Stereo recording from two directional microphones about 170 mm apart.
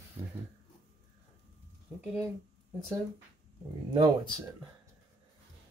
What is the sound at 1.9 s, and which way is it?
Speech, 15° right (ahead or behind).